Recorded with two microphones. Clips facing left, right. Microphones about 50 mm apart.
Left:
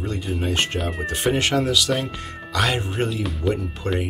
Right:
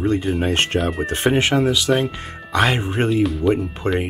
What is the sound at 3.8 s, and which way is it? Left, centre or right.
Speech, right.